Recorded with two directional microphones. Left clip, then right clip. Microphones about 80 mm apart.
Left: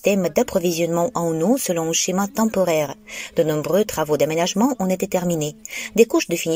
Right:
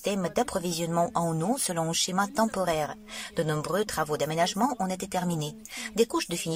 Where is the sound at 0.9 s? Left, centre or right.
Centre.